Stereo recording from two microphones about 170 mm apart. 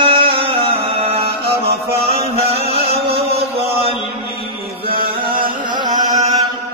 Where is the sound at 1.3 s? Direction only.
70° right (ahead or behind).